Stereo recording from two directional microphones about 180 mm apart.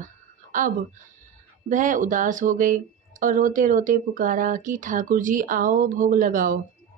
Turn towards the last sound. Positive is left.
turn(degrees=-50)  # may be behind; listen again after turning